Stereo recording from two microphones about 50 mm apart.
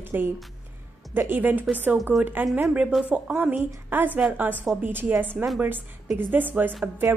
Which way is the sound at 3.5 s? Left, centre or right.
Right.